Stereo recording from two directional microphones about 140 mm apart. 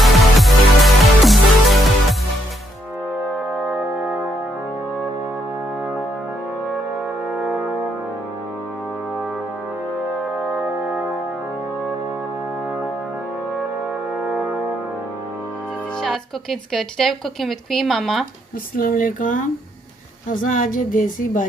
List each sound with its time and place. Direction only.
0.0 s music: centre (ahead or behind)
7.2 s brass instrument: 5° right (ahead or behind)
10.5 s music: 10° right (ahead or behind)
14.1 s brass instrument: 5° right (ahead or behind)
16.0 s a woman's voice: centre (ahead or behind)
18.8 s speech: 80° left